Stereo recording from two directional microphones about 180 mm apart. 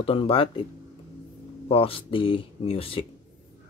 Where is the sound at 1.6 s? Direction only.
30° left (ahead or behind).